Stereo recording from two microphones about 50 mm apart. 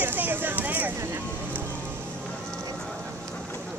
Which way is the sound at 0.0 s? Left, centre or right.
Right.